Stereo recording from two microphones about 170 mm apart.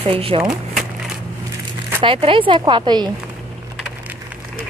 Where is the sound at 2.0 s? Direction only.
30° right (ahead or behind).